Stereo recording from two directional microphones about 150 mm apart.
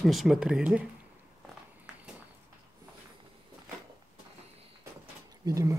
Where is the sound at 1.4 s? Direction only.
10° right (ahead or behind).